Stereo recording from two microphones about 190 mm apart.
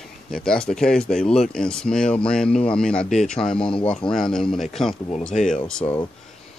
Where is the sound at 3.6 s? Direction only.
25° left (ahead or behind).